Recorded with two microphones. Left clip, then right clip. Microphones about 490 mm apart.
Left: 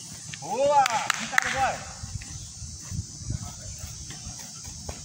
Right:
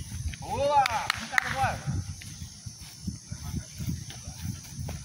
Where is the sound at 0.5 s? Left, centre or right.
Right.